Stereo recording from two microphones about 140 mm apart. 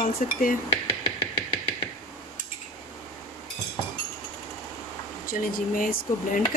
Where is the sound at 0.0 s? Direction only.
80° left.